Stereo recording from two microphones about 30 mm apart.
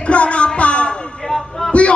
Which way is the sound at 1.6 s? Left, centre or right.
Left.